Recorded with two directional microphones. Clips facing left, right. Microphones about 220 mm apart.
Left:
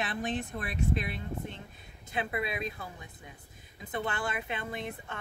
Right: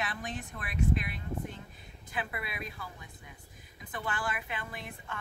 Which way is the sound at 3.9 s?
25° left (ahead or behind).